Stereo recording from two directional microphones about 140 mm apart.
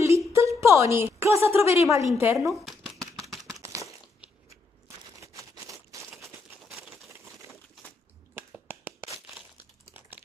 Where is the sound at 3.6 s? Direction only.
20° right (ahead or behind).